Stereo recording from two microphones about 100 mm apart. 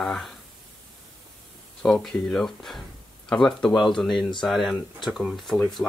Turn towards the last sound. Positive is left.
turn(degrees=0)  # may be behind; listen again after turning